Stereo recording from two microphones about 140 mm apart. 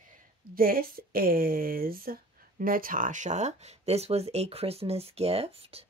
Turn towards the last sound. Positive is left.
turn(degrees=-45)  # may be behind; listen again after turning